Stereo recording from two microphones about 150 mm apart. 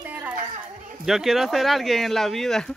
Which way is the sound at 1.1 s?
Centre (ahead or behind).